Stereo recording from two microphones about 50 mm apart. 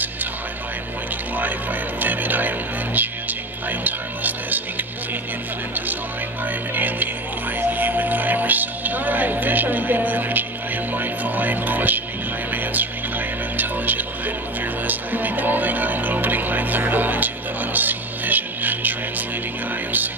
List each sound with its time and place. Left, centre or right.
1.3 s music: right
6.4 s music: right
13.6 s music: right